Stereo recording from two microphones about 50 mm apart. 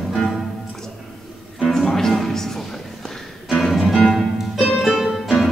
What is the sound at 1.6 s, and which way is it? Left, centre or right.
Music, centre.